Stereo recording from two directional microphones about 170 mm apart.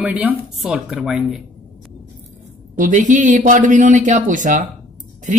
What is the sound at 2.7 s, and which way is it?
Speech, 50° right (ahead or behind).